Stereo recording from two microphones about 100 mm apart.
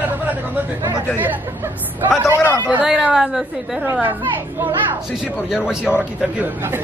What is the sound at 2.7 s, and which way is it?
Speech, 10° right (ahead or behind).